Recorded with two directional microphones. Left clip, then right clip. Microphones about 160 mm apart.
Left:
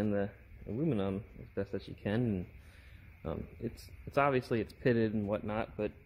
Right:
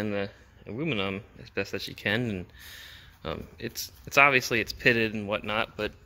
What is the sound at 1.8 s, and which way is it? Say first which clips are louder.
Speech: right 8 dB; 5° right (ahead or behind).